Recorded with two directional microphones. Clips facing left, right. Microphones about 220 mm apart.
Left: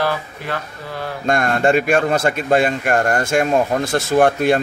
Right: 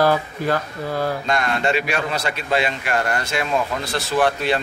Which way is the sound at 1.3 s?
50° left (ahead or behind).